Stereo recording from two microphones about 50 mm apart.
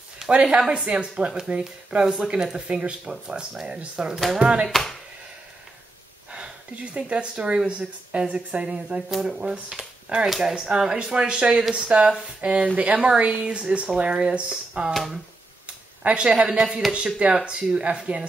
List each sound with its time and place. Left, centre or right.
0.3 s speech: right
4.6 s speech: centre
6.3 s speech: right
9.1 s speech: centre
16.0 s speech: right
16.3 s speech: centre